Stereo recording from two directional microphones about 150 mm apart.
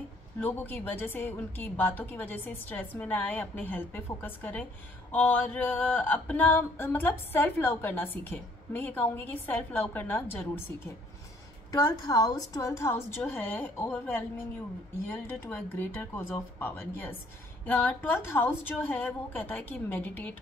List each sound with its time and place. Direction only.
0.4 s speech: 15° left (ahead or behind)
11.7 s speech: 25° left (ahead or behind)